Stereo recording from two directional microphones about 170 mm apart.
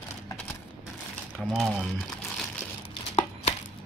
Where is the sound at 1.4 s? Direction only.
Centre (ahead or behind).